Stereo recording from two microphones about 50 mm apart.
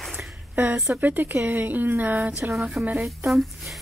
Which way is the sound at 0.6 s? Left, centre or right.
Right.